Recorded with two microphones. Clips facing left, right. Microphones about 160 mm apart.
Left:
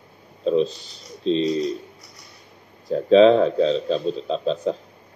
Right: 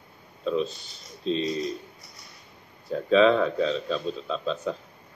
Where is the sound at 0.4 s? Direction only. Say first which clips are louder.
Left 7 dB; 35° left (ahead or behind).